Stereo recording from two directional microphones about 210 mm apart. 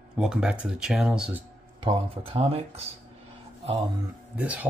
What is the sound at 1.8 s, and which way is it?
Speech, 25° right (ahead or behind).